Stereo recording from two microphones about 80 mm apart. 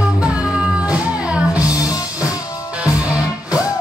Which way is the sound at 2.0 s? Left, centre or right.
Left.